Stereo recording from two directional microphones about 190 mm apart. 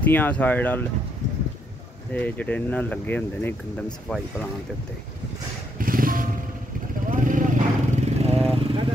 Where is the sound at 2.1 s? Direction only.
10° left (ahead or behind).